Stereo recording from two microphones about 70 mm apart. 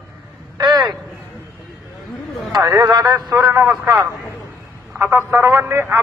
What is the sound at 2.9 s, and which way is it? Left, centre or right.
Speech, right.